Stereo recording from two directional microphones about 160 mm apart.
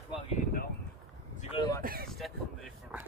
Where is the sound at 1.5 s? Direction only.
25° left (ahead or behind).